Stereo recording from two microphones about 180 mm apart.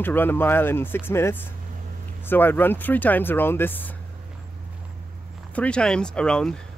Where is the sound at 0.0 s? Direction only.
10° left (ahead or behind).